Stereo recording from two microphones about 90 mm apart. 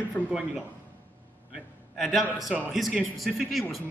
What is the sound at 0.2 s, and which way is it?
Speech, 20° left (ahead or behind).